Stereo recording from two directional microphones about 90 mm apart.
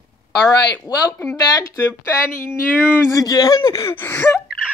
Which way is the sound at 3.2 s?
45° left (ahead or behind).